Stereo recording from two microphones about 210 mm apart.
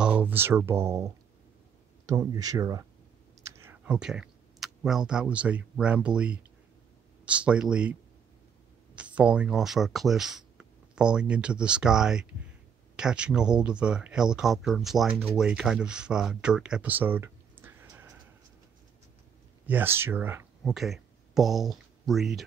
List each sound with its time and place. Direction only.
0.0 s speech: 5° right (ahead or behind)
3.6 s speech: 5° right (ahead or behind)
19.6 s speech: 10° right (ahead or behind)